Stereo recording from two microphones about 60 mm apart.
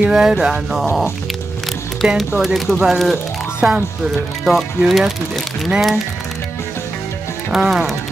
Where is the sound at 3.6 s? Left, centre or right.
Right.